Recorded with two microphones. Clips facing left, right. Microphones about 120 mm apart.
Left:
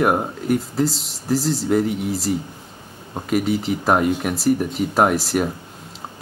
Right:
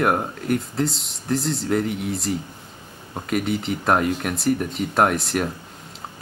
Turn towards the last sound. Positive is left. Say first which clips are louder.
# left 2 dB
turn(degrees=5)  # may be behind; listen again after turning